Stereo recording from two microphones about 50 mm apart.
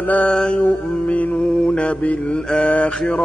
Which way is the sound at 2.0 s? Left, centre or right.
Left.